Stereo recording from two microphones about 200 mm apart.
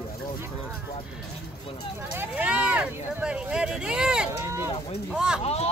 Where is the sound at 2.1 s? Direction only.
10° right (ahead or behind).